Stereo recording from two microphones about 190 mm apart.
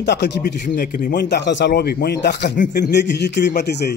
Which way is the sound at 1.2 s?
65° left (ahead or behind).